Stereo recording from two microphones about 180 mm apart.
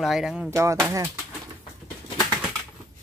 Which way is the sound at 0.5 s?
15° right (ahead or behind).